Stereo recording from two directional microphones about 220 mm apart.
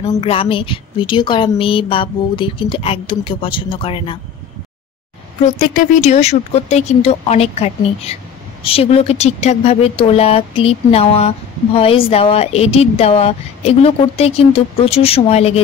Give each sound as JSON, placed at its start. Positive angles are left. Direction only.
{"t": 0.2, "sound": "speech", "side_deg": 25}
{"t": 5.6, "sound": "speech", "side_deg": 35}